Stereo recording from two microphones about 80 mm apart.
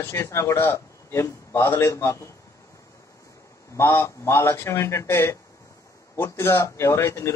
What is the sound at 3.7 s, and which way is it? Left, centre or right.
A man's voice, left.